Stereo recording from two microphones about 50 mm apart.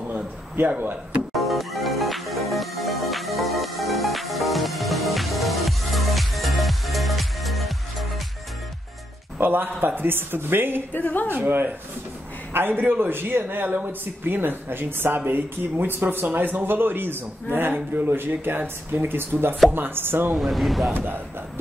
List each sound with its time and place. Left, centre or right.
0.7 s speech: right
1.3 s music: centre
9.4 s a man's voice: right
10.9 s speech: left
11.2 s a man's voice: right
20.3 s speech: centre
20.9 s a man's voice: right